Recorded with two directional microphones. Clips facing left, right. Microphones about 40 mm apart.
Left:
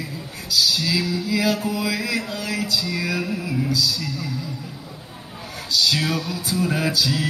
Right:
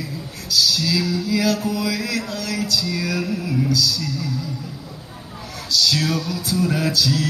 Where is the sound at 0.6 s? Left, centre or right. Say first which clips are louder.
Right 1 dB; centre.